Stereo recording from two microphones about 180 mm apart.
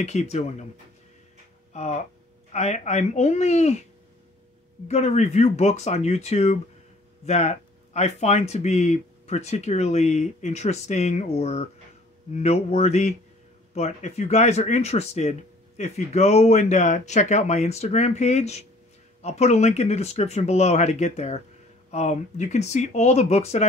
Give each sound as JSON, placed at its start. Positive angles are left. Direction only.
{"t": 0.0, "sound": "speech", "side_deg": 40}
{"t": 1.7, "sound": "speech", "side_deg": 40}
{"t": 4.8, "sound": "speech", "side_deg": 40}